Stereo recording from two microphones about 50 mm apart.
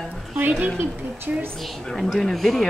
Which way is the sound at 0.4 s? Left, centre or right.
Right.